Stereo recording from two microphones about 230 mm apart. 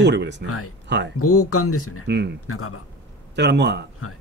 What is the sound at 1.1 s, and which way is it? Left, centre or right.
Speech, left.